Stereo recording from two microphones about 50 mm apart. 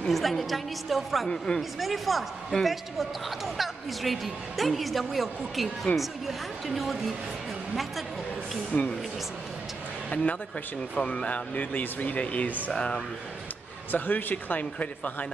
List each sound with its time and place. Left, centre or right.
0.1 s a woman's voice: centre
1.3 s speech: centre
1.6 s a woman's voice: centre
8.7 s speech: left
10.0 s speech: left
13.9 s speech: left